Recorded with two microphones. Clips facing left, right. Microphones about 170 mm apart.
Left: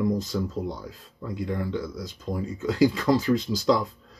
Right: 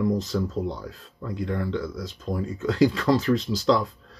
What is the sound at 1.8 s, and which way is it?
Speech, 20° left (ahead or behind).